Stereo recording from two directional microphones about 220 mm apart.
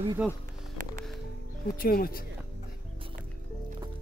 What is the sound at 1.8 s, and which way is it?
Speech, 40° left (ahead or behind).